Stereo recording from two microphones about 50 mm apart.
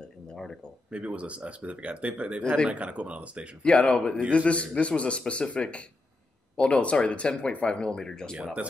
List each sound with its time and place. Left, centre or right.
0.3 s a sound: centre
0.8 s speech: right
3.6 s speech: centre